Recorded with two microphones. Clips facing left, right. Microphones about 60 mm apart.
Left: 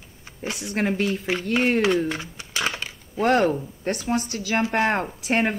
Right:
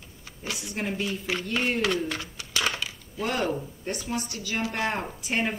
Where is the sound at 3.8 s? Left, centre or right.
Left.